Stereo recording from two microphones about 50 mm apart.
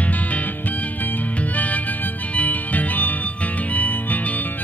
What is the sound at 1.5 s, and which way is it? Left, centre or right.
Music, left.